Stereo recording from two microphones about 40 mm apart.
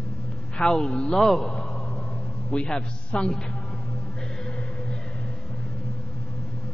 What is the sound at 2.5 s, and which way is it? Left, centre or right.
Speech, left.